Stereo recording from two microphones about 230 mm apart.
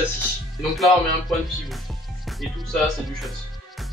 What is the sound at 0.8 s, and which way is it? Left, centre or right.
Music, centre.